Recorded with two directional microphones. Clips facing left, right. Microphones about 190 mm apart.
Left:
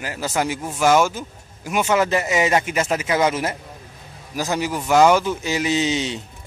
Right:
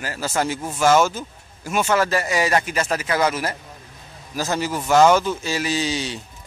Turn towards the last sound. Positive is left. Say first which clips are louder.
# left 3 dB
turn(degrees=20)  # may be behind; listen again after turning